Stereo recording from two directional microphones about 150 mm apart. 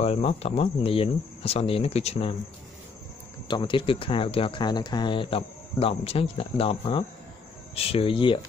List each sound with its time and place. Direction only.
0.0 s speech: 40° left (ahead or behind)
3.4 s speech: 30° left (ahead or behind)